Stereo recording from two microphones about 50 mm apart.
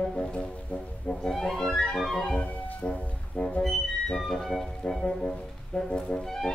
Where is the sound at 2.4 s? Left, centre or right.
Left.